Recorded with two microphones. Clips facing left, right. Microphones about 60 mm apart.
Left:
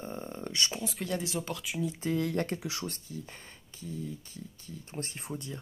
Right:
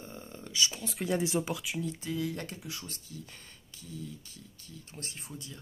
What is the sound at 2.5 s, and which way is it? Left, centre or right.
Speech, left.